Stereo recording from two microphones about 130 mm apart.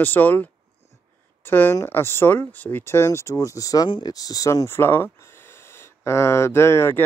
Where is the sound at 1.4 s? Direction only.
15° left (ahead or behind).